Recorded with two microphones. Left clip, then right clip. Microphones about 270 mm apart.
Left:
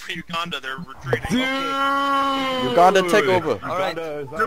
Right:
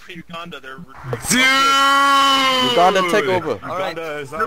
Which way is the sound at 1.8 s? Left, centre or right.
Right.